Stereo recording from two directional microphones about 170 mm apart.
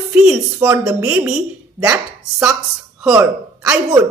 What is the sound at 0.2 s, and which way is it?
A woman's voice, 5° right (ahead or behind).